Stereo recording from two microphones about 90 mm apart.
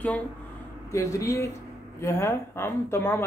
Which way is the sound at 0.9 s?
35° left (ahead or behind).